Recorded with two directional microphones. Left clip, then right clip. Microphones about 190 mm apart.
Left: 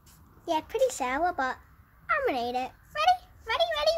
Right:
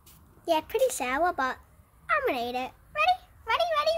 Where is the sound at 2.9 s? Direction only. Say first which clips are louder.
Left 1 dB; 15° left (ahead or behind).